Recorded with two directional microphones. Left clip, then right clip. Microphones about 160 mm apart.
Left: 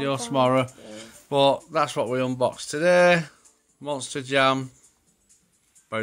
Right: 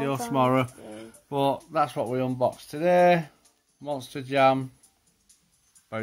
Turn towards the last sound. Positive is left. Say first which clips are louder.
# left 5 dB
turn(degrees=5)  # may be behind; listen again after turning